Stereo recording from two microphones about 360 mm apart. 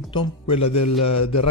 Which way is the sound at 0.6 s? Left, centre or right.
Left.